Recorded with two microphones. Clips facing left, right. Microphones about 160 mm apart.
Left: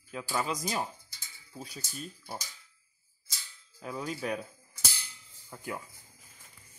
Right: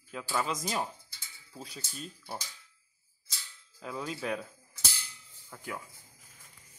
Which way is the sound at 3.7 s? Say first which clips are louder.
Left 1 dB; 5° left (ahead or behind).